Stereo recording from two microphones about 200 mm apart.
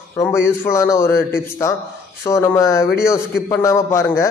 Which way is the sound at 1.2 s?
45° left (ahead or behind).